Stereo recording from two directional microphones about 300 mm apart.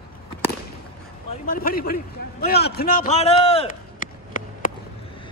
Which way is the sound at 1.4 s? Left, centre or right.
Left.